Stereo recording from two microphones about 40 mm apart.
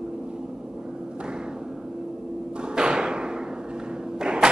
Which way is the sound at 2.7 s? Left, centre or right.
Right.